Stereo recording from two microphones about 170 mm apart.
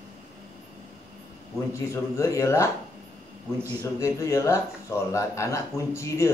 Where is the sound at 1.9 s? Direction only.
20° left (ahead or behind).